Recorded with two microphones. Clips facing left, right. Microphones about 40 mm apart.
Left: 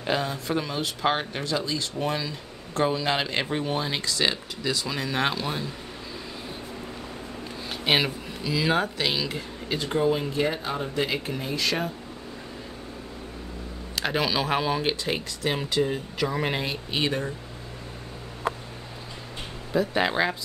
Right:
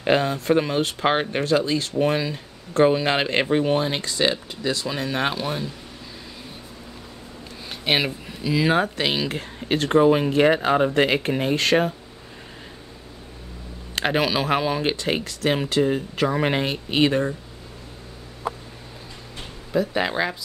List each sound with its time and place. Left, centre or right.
0.0 s speech: right; by 5.7 s centre
7.7 s a sound: centre
8.5 s speech: right
9.8 s speech: right
13.9 s a sound: right
14.2 s speech: centre
15.2 s speech: right
15.9 s speech: right
19.9 s speech: centre